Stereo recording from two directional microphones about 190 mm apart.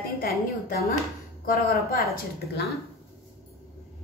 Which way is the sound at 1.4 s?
50° left (ahead or behind).